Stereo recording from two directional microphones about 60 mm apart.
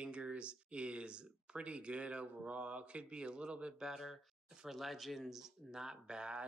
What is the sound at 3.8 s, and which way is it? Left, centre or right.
Speech, centre.